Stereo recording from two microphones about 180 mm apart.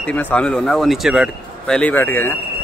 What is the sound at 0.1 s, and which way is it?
Speech, 5° left (ahead or behind).